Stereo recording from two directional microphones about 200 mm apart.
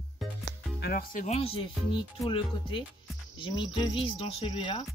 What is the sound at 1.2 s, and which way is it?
Speech, 30° left (ahead or behind).